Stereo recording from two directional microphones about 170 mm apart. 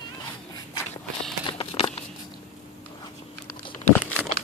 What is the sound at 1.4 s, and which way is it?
Walk, 30° left (ahead or behind).